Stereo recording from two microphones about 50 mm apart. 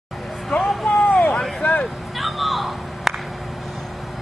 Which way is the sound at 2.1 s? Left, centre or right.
Centre.